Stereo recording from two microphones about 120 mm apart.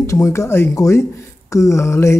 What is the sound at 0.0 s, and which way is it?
A man's voice, 25° left (ahead or behind).